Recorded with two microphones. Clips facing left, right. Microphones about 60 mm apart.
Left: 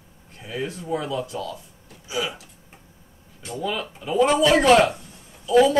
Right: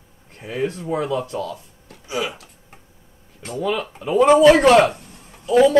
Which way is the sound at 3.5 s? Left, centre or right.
Right.